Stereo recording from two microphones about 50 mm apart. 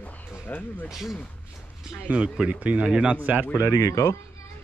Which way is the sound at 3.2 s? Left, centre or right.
Right.